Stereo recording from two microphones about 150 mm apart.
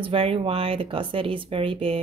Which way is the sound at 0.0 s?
40° right (ahead or behind).